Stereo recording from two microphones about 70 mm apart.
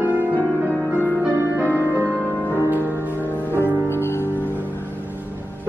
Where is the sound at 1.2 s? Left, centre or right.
Right.